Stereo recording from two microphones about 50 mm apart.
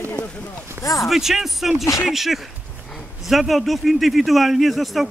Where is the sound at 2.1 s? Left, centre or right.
Centre.